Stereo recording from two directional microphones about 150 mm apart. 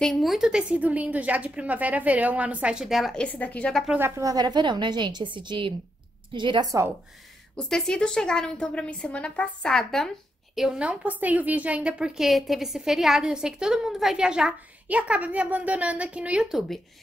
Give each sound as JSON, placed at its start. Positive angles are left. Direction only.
{"t": 0.0, "sound": "a woman's voice", "side_deg": 0}
{"t": 3.8, "sound": "a woman's voice", "side_deg": -10}
{"t": 4.2, "sound": "a woman's voice", "side_deg": -25}
{"t": 7.5, "sound": "a woman's voice", "side_deg": 5}